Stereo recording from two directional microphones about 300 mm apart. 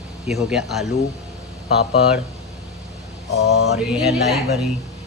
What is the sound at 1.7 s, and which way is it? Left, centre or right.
Speech, left.